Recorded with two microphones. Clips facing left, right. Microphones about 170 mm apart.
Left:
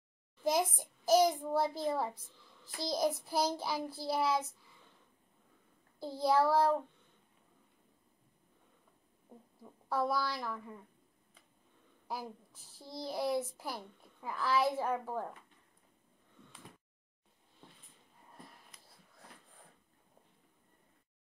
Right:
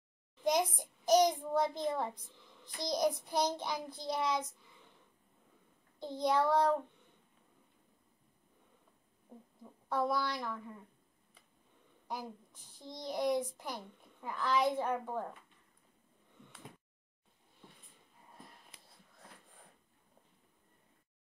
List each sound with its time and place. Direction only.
0.7 s a child's voice: 5° left (ahead or behind)
2.2 s a sound: 20° right (ahead or behind)
2.9 s a child's voice: 5° left (ahead or behind)
5.9 s a child's voice: 5° left (ahead or behind)
9.8 s a child's voice: 5° left (ahead or behind)
12.1 s a child's voice: 5° left (ahead or behind)